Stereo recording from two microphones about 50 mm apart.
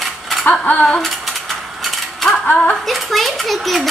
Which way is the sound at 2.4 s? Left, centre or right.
Left.